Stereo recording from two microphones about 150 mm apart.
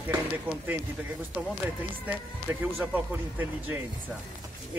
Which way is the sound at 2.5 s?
20° right (ahead or behind).